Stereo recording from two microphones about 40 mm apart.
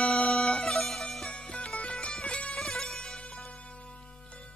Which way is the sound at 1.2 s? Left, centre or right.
Left.